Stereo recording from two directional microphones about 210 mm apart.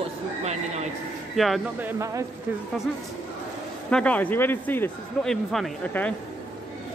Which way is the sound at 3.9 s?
5° left (ahead or behind).